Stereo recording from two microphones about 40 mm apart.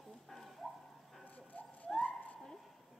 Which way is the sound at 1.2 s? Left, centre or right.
Left.